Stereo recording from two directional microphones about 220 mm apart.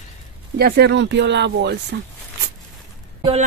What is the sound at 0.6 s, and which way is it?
Speech, 45° right (ahead or behind).